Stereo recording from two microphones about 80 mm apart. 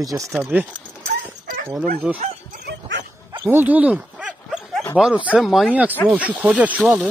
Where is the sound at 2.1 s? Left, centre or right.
Centre.